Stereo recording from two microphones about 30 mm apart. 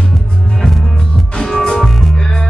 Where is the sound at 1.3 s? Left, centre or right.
Left.